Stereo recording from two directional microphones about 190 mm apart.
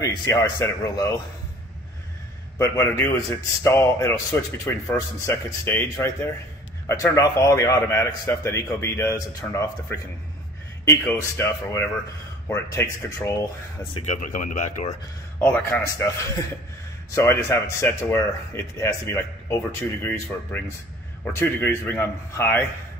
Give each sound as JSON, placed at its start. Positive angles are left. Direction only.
{"t": 0.0, "sound": "speech", "side_deg": 15}
{"t": 2.6, "sound": "speech", "side_deg": 15}
{"t": 14.0, "sound": "speech", "side_deg": 40}
{"t": 15.4, "sound": "speech", "side_deg": 10}
{"t": 17.1, "sound": "speech", "side_deg": 15}